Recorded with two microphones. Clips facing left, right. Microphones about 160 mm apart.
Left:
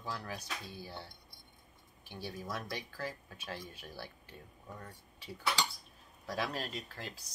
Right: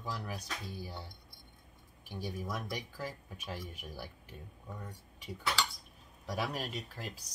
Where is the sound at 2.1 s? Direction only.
15° right (ahead or behind).